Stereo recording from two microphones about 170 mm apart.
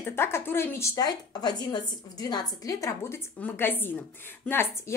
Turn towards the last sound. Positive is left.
turn(degrees=15)  # may be behind; listen again after turning